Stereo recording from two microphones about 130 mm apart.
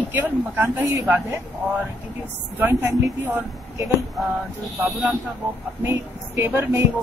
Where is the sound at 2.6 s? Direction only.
15° right (ahead or behind).